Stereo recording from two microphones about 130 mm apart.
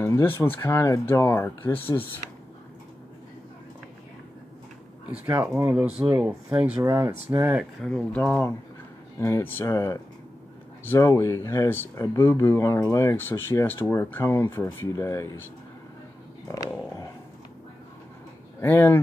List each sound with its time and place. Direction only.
0.0 s speech: 20° left (ahead or behind)
5.0 s speech: 15° right (ahead or behind)
6.8 s speech: 20° right (ahead or behind)
7.8 s speech: 5° left (ahead or behind); by 15.4 s 25° left (ahead or behind)
18.6 s speech: 15° left (ahead or behind)